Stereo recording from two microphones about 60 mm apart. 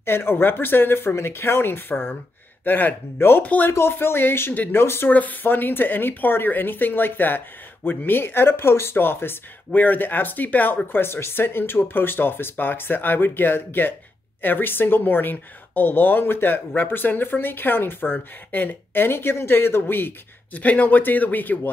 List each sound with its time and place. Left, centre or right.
0.0 s a woman's voice: left
3.4 s speech: left
3.7 s a woman's voice: left
5.1 s a woman's voice: left
10.9 s a woman's voice: left